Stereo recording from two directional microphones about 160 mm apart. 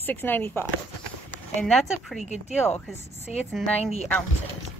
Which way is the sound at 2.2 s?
45° left (ahead or behind).